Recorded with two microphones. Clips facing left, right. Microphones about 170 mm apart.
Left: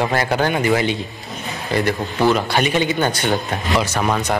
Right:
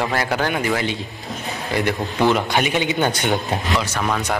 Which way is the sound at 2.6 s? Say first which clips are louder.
Left 2 dB; 10° right (ahead or behind).